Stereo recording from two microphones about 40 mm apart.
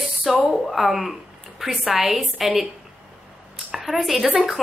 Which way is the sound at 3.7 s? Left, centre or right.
Centre.